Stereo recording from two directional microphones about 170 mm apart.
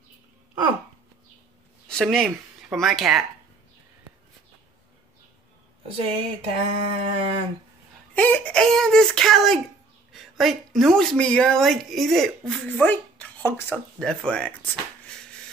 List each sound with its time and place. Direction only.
1.9 s speech: 5° left (ahead or behind)
6.0 s a sound: 35° right (ahead or behind)
8.1 s a woman's voice: 10° left (ahead or behind)